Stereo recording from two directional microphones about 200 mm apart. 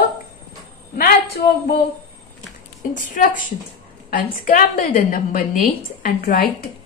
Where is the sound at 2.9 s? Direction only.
40° left (ahead or behind).